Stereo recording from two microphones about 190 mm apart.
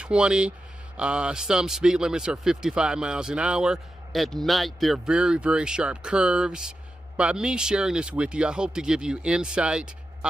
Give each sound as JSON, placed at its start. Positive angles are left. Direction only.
{"t": 0.0, "sound": "speech", "side_deg": -5}